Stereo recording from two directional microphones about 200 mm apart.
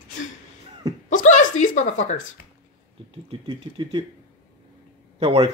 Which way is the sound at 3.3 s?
25° right (ahead or behind).